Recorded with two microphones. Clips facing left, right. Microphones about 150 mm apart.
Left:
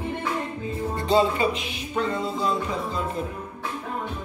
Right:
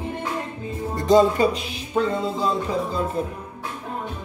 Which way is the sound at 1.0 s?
40° right (ahead or behind).